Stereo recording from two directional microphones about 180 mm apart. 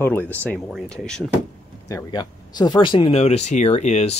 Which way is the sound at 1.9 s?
20° left (ahead or behind).